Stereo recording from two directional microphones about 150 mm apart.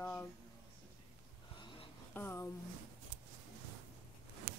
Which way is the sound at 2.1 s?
15° left (ahead or behind).